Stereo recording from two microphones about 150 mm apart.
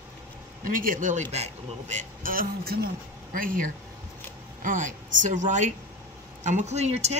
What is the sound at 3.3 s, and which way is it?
A man's voice, 65° right (ahead or behind).